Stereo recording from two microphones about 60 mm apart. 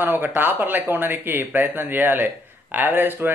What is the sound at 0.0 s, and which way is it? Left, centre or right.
Speech, right.